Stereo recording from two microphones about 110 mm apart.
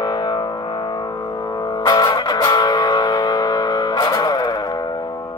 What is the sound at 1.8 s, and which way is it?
Music, 35° left (ahead or behind).